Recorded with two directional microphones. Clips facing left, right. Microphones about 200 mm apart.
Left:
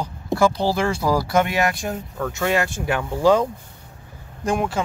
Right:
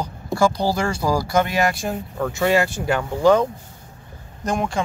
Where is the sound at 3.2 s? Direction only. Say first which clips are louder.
Right 1 dB; 10° left (ahead or behind).